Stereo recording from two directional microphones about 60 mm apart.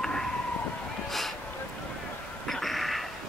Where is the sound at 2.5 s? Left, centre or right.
Centre.